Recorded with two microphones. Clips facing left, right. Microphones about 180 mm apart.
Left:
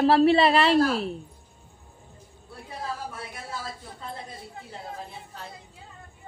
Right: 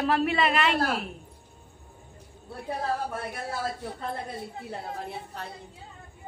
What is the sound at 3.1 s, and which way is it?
Speech, 55° right (ahead or behind).